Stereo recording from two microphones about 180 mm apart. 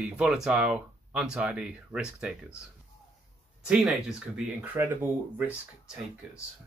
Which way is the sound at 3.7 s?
5° right (ahead or behind).